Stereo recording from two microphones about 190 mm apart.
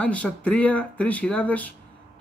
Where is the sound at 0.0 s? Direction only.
5° left (ahead or behind).